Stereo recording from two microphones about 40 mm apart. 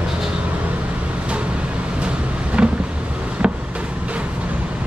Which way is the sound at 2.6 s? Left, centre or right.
Right.